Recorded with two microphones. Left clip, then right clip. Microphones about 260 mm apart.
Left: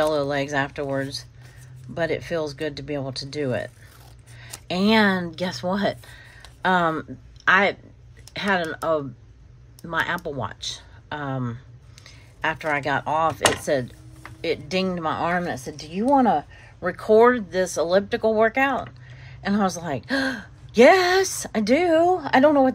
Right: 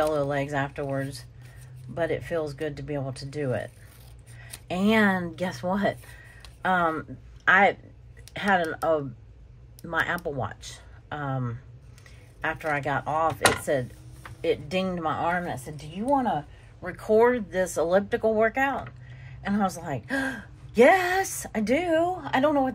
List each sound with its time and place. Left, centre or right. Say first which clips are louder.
0.0 s a woman's voice: left 3 dB; centre